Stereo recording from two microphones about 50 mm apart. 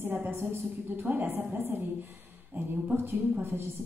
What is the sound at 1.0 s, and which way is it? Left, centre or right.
A woman's voice, right.